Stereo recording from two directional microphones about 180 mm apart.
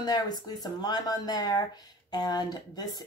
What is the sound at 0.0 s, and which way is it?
Speech, 20° left (ahead or behind).